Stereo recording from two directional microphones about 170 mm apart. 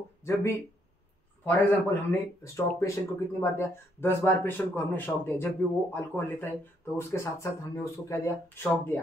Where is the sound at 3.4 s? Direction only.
15° left (ahead or behind).